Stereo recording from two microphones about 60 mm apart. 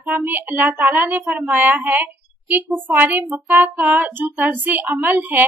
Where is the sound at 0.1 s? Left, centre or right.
Right.